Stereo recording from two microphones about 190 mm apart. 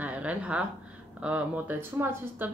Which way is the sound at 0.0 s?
5° right (ahead or behind).